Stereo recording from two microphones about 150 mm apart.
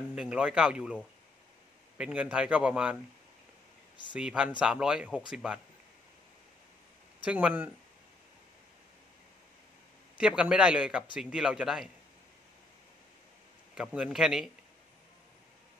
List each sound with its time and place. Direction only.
0.1 s speech: 5° right (ahead or behind)
2.0 s speech: 5° right (ahead or behind)
4.1 s speech: 5° right (ahead or behind)
7.2 s speech: 10° right (ahead or behind)
10.1 s speech: 5° right (ahead or behind)
13.7 s speech: 5° right (ahead or behind)